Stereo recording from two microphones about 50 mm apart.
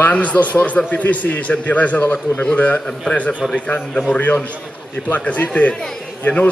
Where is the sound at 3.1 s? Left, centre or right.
Left.